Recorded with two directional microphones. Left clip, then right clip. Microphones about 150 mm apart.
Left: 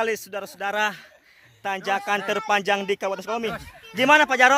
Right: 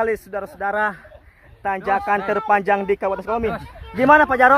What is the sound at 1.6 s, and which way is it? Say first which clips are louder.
Speech: right 5 dB; 90° left.